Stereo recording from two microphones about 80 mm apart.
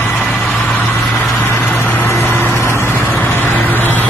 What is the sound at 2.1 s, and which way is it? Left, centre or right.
Vehicle, left.